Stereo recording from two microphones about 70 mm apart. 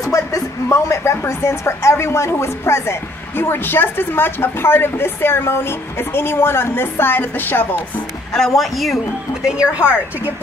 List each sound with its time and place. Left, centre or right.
0.0 s speech: left
8.3 s a man's voice: centre
9.5 s a woman's voice: centre